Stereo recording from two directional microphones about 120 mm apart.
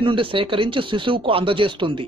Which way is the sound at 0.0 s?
45° right (ahead or behind).